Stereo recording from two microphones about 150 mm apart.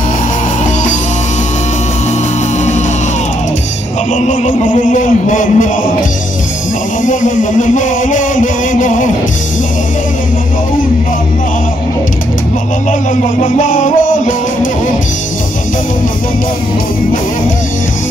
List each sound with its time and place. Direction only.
4.1 s music: 60° left (ahead or behind)
7.1 s music: 60° left (ahead or behind)
13.1 s music: 55° left (ahead or behind)